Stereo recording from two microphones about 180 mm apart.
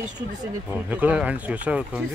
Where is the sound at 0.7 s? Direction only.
10° right (ahead or behind).